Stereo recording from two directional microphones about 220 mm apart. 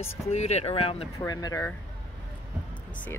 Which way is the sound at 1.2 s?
15° left (ahead or behind).